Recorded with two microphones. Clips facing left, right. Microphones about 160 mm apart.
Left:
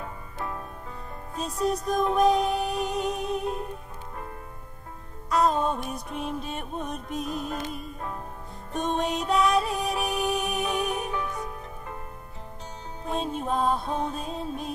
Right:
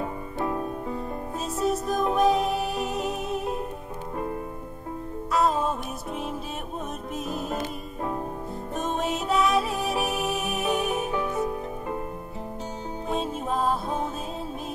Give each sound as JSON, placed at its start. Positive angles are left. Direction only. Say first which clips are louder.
{"t": 0.0, "sound": "music", "louder": "right 7 dB", "side_deg": -15}
{"t": 1.4, "sound": "music", "louder": "even", "side_deg": 0}
{"t": 5.3, "sound": "music", "louder": "even", "side_deg": 0}
{"t": 7.5, "sound": "music", "louder": "right 2 dB", "side_deg": -20}
{"t": 8.7, "sound": "music", "louder": "left 1 dB", "side_deg": -5}
{"t": 11.3, "sound": "music", "louder": "right 8 dB", "side_deg": -25}
{"t": 13.1, "sound": "music", "louder": "even", "side_deg": 0}